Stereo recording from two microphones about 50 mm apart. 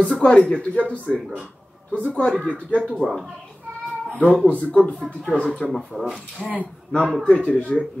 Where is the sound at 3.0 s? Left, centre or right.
Centre.